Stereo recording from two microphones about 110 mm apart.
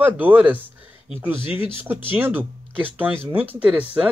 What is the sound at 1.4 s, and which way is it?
Speech, 50° left (ahead or behind).